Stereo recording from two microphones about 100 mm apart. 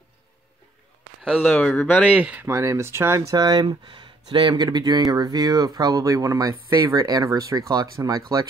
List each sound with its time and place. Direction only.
1.4 s speech: 15° left (ahead or behind)
2.1 s speech: 10° right (ahead or behind)
2.4 s speech: 30° right (ahead or behind)